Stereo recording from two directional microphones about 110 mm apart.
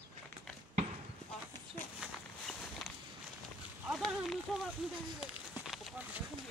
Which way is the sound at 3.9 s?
5° left (ahead or behind).